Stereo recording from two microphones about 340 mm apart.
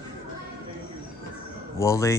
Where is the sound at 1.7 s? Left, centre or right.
Centre.